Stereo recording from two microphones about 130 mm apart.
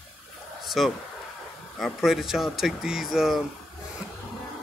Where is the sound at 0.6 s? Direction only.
Centre (ahead or behind).